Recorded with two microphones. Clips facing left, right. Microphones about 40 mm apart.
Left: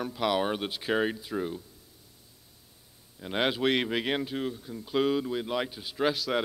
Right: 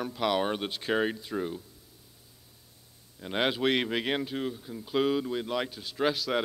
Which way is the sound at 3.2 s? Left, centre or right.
Centre.